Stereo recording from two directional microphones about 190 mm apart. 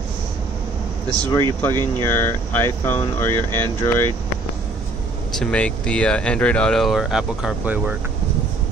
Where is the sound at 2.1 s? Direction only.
15° left (ahead or behind).